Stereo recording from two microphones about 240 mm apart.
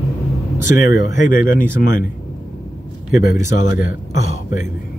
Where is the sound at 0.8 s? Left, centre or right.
Left.